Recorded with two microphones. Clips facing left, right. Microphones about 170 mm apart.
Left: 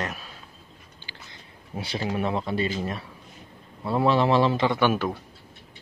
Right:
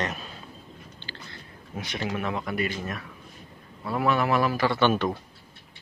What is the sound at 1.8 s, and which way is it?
Speech, 30° left (ahead or behind).